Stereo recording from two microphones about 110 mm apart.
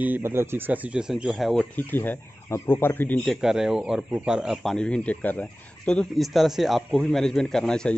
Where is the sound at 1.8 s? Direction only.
20° left (ahead or behind).